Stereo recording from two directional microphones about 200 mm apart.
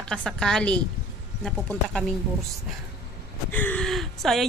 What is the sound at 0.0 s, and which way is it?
Speech, 5° left (ahead or behind).